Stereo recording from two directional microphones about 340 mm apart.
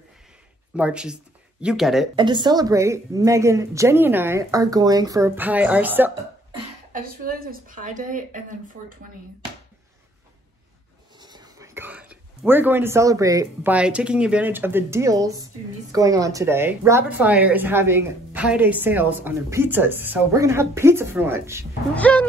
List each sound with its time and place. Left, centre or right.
0.7 s speech: centre
2.1 s a woman's voice: centre
6.9 s speech: right
11.1 s a woman's voice: centre
21.9 s speech: centre